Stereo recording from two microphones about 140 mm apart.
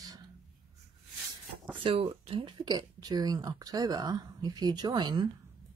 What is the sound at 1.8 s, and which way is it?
Speech, 40° right (ahead or behind).